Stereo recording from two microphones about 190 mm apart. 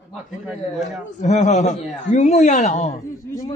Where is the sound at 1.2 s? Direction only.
35° left (ahead or behind).